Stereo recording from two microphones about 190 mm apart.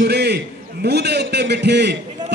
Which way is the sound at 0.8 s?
60° right (ahead or behind).